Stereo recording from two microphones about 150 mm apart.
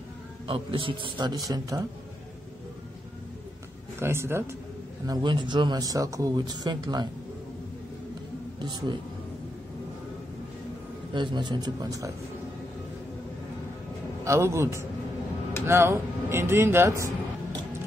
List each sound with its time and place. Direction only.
0.5 s a man's voice: 35° right (ahead or behind)
4.0 s speech: 15° right (ahead or behind)
5.0 s speech: 30° right (ahead or behind)
8.5 s a man's voice: 30° right (ahead or behind)
11.1 s speech: 30° right (ahead or behind)
14.2 s speech: 20° right (ahead or behind)